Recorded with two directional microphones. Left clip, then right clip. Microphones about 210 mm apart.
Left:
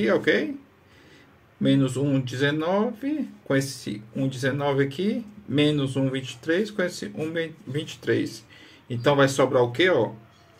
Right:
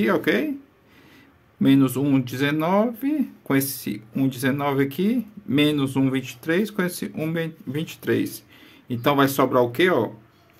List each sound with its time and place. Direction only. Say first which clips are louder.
0.0 s speech: even; 35° right (ahead or behind)
1.6 s speech: right 4 dB; 35° right (ahead or behind)